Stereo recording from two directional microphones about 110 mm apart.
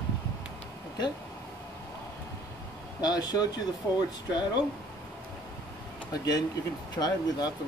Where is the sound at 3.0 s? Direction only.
35° left (ahead or behind).